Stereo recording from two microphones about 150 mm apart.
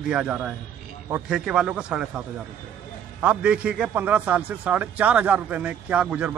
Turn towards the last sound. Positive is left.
turn(degrees=-10)  # may be behind; listen again after turning